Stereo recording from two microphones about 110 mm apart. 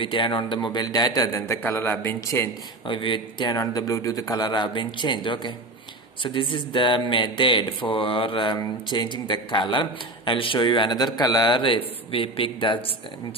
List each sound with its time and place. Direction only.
0.0 s a man's voice: 50° left (ahead or behind)
0.7 s a man's voice: 35° left (ahead or behind)
1.6 s a man's voice: 20° left (ahead or behind)
2.9 s a man's voice: 50° left (ahead or behind)
3.5 s a man's voice: 35° left (ahead or behind); by 12.9 s 50° left (ahead or behind)